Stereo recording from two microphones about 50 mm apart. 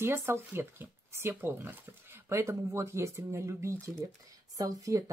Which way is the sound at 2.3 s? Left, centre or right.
Right.